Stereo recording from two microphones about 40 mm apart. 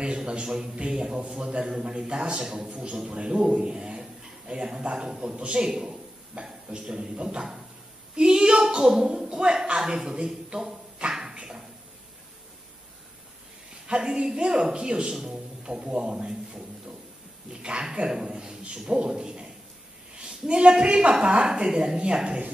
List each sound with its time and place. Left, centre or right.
0.2 s a woman's voice: right
8.2 s a sound: right
13.8 s a woman's voice: right
17.5 s a man's voice: right